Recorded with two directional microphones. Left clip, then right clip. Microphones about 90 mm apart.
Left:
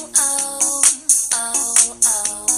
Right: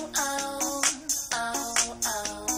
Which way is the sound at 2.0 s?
55° left (ahead or behind).